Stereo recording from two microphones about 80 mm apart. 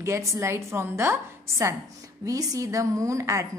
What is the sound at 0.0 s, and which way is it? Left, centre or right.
A woman's voice, right.